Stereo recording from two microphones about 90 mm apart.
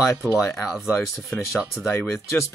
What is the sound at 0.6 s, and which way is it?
Speech, 5° right (ahead or behind).